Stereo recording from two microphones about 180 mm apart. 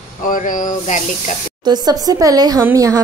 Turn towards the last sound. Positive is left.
turn(degrees=-20)  # may be behind; listen again after turning